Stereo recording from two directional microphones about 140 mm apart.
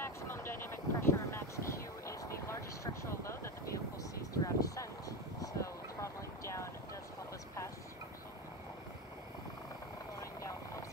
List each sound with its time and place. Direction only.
0.0 s vehicle: 15° left (ahead or behind)